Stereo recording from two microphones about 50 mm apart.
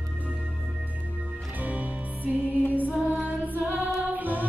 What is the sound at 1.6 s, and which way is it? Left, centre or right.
Music, right.